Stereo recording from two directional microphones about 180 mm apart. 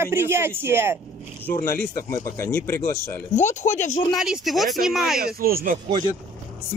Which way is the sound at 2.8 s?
40° left (ahead or behind).